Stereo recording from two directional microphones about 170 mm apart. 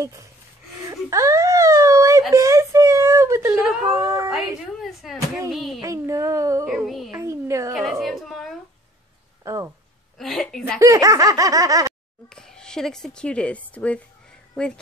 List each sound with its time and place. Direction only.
0.0 s speech: 20° right (ahead or behind)
0.8 s whimper: 20° right (ahead or behind)
2.3 s a sound: 20° right (ahead or behind)
4.3 s speech: centre (ahead or behind)
5.8 s speech: 20° right (ahead or behind)
6.7 s speech: centre (ahead or behind)
7.2 s speech: 15° right (ahead or behind)
7.7 s speech: centre (ahead or behind)
9.4 s speech: 20° right (ahead or behind)
10.1 s speech: centre (ahead or behind)
10.8 s laughter: 20° right (ahead or behind)
12.3 s speech: 5° left (ahead or behind)